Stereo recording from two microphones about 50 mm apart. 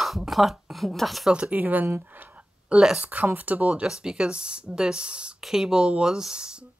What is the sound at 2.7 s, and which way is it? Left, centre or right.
Speech, centre.